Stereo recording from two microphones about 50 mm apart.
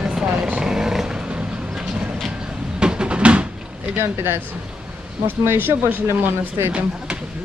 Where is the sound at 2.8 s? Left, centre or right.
Centre.